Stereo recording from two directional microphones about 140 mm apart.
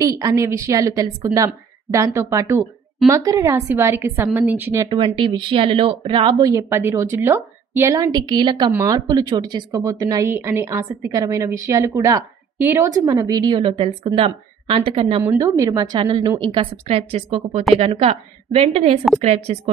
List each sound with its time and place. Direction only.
0.0 s a woman's voice: 25° right (ahead or behind)
4.8 s speech: 35° right (ahead or behind)
6.4 s speech: 20° right (ahead or behind)
15.3 s speech: 25° right (ahead or behind)
16.0 s a woman's voice: 35° right (ahead or behind)